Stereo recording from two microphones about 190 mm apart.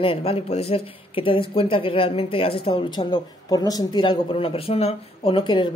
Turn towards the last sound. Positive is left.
turn(degrees=25)  # may be behind; listen again after turning